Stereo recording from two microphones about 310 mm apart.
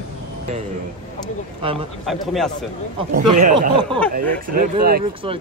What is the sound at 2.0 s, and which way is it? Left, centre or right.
Speech, centre.